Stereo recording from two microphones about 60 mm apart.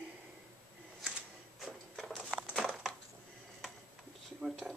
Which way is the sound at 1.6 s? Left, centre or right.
Centre.